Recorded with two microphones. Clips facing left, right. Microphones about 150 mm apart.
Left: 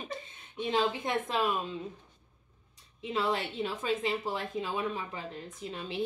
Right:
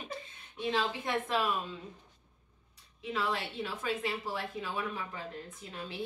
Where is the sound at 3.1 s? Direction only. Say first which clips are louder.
Left 3 dB; 20° left (ahead or behind).